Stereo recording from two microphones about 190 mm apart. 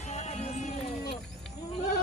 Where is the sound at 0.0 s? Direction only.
35° left (ahead or behind).